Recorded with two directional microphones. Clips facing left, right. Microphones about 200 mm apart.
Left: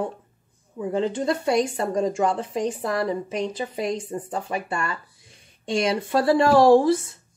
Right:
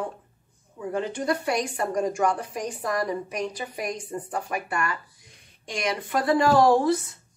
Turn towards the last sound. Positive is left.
turn(degrees=25)  # may be behind; listen again after turning